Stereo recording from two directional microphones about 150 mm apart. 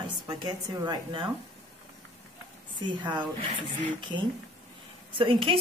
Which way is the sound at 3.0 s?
30° right (ahead or behind).